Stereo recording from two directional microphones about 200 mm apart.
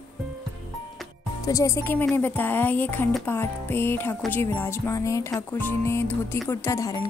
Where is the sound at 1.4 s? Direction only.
15° left (ahead or behind).